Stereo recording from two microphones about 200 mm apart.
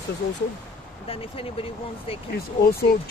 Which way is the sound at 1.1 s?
30° left (ahead or behind).